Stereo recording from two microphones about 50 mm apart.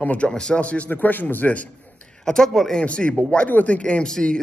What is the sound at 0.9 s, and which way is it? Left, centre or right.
Speech, left.